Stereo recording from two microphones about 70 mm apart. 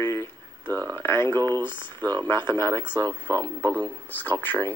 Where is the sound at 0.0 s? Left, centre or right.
Left.